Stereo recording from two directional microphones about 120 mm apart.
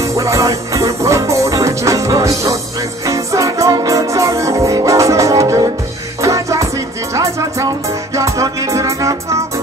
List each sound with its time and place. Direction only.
0.1 s music: 25° right (ahead or behind)
8.2 s music: 25° right (ahead or behind)